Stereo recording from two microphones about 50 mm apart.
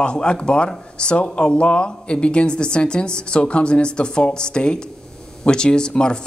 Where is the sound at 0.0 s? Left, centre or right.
Centre.